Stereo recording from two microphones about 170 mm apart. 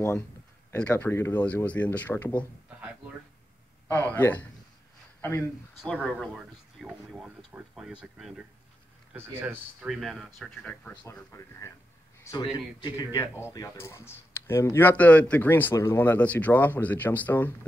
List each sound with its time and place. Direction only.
0.7 s speech: 10° left (ahead or behind)
3.9 s speech: 10° left (ahead or behind)
5.8 s speech: centre (ahead or behind)
9.8 s speech: centre (ahead or behind); by 11.7 s 15° left (ahead or behind)
12.2 s a sound: 20° left (ahead or behind)
12.8 s speech: 20° left (ahead or behind)